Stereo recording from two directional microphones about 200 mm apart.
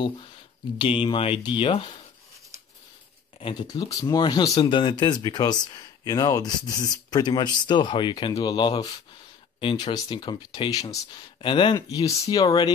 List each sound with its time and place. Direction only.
0.7 s speech: 25° left (ahead or behind)
3.3 s speech: 25° left (ahead or behind)